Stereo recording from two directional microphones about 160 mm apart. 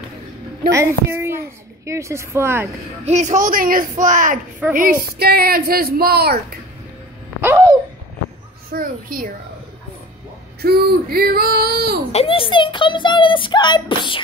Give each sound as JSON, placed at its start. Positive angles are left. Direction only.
{"t": 0.7, "sound": "speech", "side_deg": -15}
{"t": 3.1, "sound": "a woman's voice", "side_deg": -50}
{"t": 4.7, "sound": "speech", "side_deg": -65}
{"t": 7.4, "sound": "a sound", "side_deg": -20}
{"t": 8.7, "sound": "a child's voice", "side_deg": -60}
{"t": 10.6, "sound": "speech", "side_deg": -80}
{"t": 12.1, "sound": "speech", "side_deg": 35}